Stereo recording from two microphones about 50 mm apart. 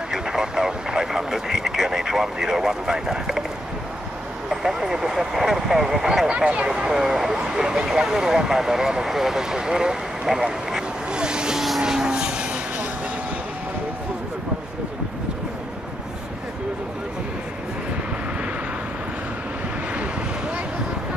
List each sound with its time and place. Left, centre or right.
0.1 s vehicle: centre
4.5 s speech: centre
11.8 s vehicle: centre
19.9 s vehicle: right